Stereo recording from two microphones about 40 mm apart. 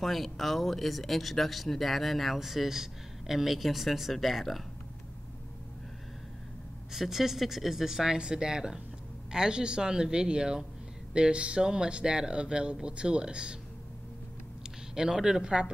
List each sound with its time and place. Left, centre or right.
0.0 s speech: centre
6.9 s speech: centre; by 13.6 s right
15.0 s speech: centre